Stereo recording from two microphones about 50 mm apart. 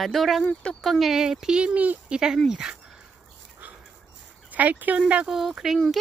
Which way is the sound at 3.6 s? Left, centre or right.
Right.